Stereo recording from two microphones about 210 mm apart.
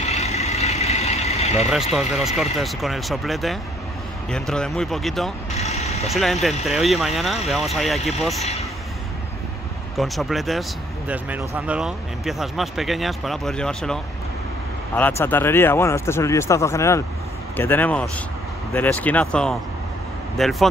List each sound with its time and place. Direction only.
0.0 s vehicle: 30° left (ahead or behind)
1.7 s speech: centre (ahead or behind)
5.6 s vehicle: 30° left (ahead or behind)
6.0 s speech: centre (ahead or behind)
8.4 s speech: 30° left (ahead or behind)
9.9 s speech: centre (ahead or behind)